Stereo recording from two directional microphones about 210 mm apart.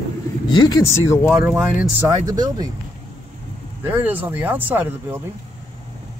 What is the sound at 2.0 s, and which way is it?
Speech, 20° right (ahead or behind).